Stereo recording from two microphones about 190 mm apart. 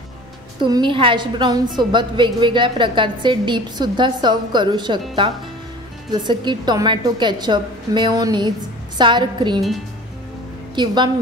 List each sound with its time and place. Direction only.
0.6 s a woman's voice: 25° right (ahead or behind)
6.1 s a woman's voice: 25° right (ahead or behind)
10.8 s a woman's voice: 25° right (ahead or behind)